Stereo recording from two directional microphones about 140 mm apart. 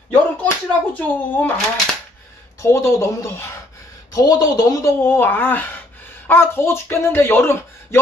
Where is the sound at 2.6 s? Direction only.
20° left (ahead or behind).